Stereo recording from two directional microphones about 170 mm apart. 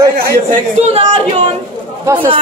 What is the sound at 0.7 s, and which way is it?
Speech, 35° right (ahead or behind).